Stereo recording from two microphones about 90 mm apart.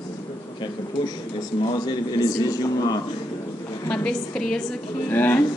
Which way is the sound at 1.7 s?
50° left (ahead or behind).